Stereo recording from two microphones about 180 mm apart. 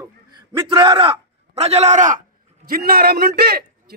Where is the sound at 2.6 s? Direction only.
55° right (ahead or behind).